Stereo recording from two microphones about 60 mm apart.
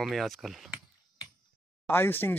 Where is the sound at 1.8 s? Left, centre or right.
Left.